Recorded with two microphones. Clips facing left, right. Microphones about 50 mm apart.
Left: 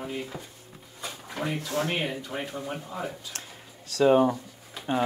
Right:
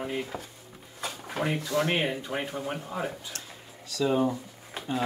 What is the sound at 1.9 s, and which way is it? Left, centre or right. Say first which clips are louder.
Drawer open or close: right 2 dB; right.